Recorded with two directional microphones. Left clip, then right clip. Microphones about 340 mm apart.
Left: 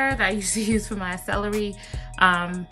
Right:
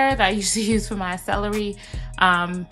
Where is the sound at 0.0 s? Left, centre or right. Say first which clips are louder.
Right 4 dB; centre.